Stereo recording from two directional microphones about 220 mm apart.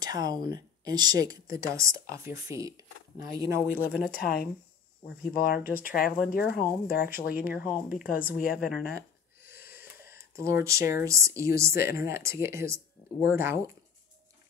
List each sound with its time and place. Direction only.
0.0 s speech: 15° right (ahead or behind)
4.1 s speech: 40° left (ahead or behind)
8.5 s speech: centre (ahead or behind)
9.4 s wheeze: 10° right (ahead or behind)
9.8 s speech: 10° right (ahead or behind)